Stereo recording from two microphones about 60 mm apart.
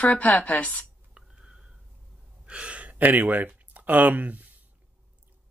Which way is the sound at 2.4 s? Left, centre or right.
Centre.